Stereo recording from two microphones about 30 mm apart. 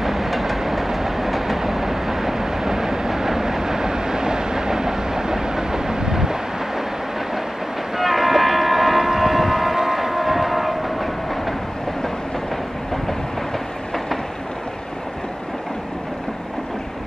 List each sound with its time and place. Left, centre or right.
0.0 s train: centre
1.6 s vehicle: centre
8.0 s train: centre